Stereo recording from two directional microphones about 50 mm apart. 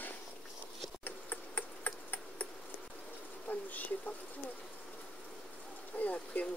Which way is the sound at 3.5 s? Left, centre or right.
Left.